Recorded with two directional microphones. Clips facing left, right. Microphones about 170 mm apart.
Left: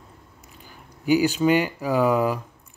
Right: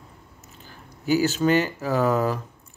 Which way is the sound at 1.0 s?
15° left (ahead or behind).